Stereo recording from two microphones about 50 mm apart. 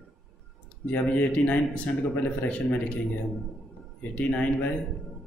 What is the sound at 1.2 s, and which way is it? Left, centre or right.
Speech, left.